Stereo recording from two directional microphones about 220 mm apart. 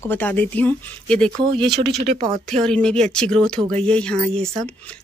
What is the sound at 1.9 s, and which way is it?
Speech, 30° right (ahead or behind).